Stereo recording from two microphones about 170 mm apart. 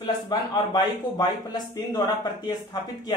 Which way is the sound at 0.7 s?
25° left (ahead or behind).